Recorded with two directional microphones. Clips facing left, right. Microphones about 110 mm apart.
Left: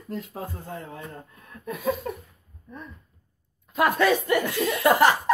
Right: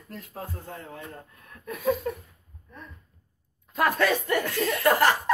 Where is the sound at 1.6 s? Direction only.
20° left (ahead or behind).